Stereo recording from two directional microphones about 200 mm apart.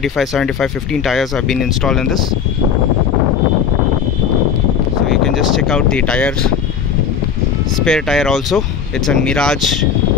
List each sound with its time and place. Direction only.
0.0 s speech: centre (ahead or behind)
5.0 s speech: centre (ahead or behind)
7.8 s speech: centre (ahead or behind)